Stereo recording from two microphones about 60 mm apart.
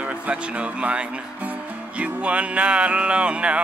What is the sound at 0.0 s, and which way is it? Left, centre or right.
Speech, centre.